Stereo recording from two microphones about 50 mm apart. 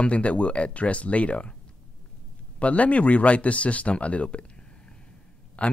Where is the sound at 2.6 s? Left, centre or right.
Left.